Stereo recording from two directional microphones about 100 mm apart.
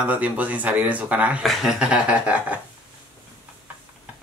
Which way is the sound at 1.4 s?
Centre (ahead or behind).